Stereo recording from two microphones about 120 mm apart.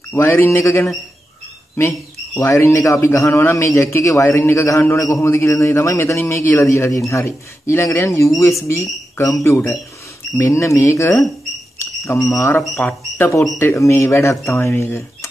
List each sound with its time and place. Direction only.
0.1 s speech: 20° left (ahead or behind)